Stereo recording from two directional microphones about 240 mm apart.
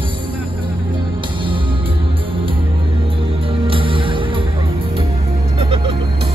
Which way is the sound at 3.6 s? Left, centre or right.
Right.